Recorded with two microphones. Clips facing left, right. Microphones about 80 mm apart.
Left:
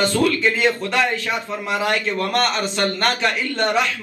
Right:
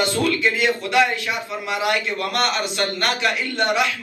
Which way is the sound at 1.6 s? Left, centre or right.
Left.